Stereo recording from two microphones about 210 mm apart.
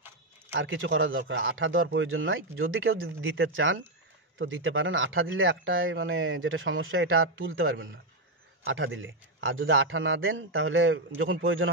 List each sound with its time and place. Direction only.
0.5 s speech: 65° right (ahead or behind)